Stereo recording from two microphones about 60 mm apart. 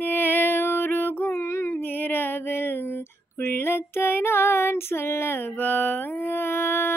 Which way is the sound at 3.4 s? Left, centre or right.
Left.